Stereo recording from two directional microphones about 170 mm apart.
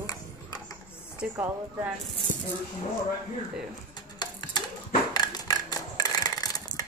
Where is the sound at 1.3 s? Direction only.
10° right (ahead or behind).